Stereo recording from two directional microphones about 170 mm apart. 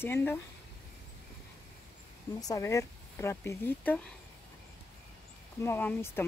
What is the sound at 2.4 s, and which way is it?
Speech, 20° left (ahead or behind).